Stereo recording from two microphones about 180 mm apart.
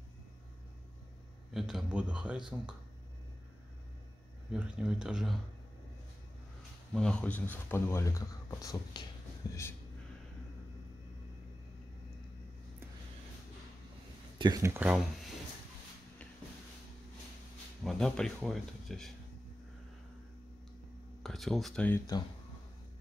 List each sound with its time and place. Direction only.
1.5 s speech: centre (ahead or behind)
4.5 s speech: 5° right (ahead or behind)
6.9 s speech: 5° left (ahead or behind)
14.4 s speech: 20° right (ahead or behind)
17.8 s speech: centre (ahead or behind)
21.2 s speech: centre (ahead or behind)